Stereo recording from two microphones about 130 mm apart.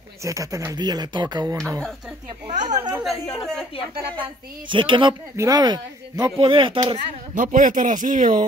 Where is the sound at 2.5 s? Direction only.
65° right (ahead or behind).